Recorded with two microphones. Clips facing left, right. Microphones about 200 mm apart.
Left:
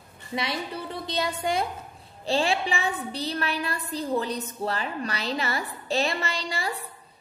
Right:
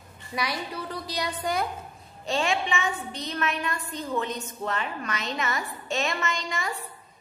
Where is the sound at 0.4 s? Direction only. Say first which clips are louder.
Even; 25° left (ahead or behind).